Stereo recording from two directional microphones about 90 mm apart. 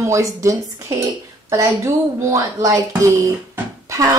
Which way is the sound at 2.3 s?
35° right (ahead or behind).